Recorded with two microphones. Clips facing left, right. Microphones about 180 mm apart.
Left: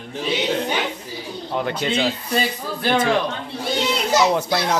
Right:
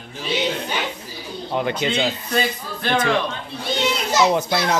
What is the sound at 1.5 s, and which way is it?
Speech, 10° right (ahead or behind).